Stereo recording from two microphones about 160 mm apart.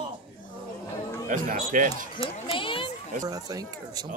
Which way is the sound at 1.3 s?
50° right (ahead or behind).